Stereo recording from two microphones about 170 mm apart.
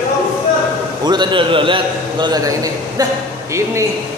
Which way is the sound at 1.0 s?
25° right (ahead or behind).